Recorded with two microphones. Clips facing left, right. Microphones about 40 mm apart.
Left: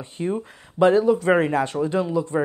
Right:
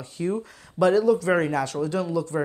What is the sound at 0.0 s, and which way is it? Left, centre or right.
Speech, left.